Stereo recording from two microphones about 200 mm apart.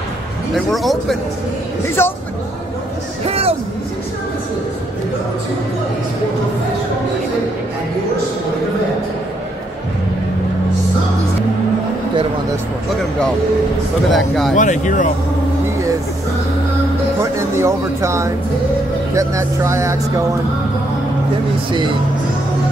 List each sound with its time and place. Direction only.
0.6 s a man's voice: centre (ahead or behind)
2.0 s speech: 10° left (ahead or behind)
3.3 s speech: 30° right (ahead or behind)
14.0 s a man's voice: centre (ahead or behind)
14.5 s speech: 40° left (ahead or behind)
17.2 s speech: 15° right (ahead or behind)